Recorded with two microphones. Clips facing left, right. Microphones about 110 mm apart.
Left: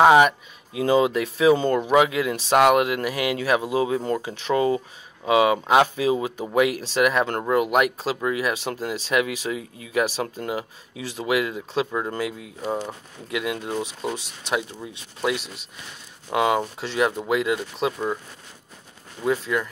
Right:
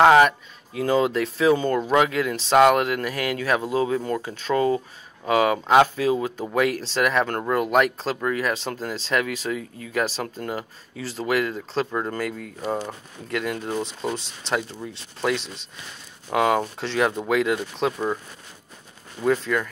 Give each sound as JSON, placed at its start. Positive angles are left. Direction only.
{"t": 0.0, "sound": "speech", "side_deg": 15}
{"t": 7.2, "sound": "speech", "side_deg": 25}
{"t": 7.5, "sound": "speech", "side_deg": 15}
{"t": 9.6, "sound": "speech", "side_deg": -45}
{"t": 9.9, "sound": "speech", "side_deg": 15}
{"t": 12.2, "sound": "speech", "side_deg": -50}
{"t": 12.6, "sound": "speech", "side_deg": 5}
{"t": 17.9, "sound": "speech", "side_deg": -10}